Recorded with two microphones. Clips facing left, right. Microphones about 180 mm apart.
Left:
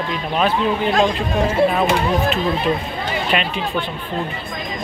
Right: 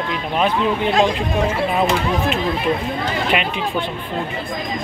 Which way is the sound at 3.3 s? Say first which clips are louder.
Left 1 dB; 15° right (ahead or behind).